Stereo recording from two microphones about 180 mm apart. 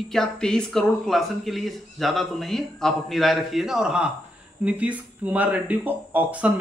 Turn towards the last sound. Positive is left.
turn(degrees=-10)  # may be behind; listen again after turning